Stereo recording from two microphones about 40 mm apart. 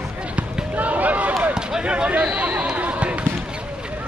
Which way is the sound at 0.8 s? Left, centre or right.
Right.